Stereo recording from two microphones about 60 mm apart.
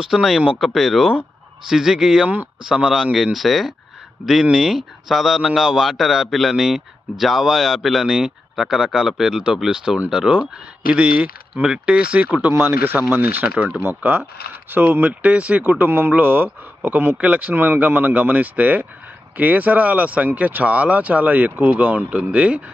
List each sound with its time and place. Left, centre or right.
0.0 s a man's voice: centre; by 12.5 s right
12.5 s speech: right; by 22.6 s centre